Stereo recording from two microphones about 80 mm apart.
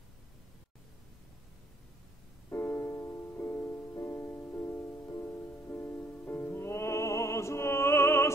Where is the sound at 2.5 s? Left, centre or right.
Left.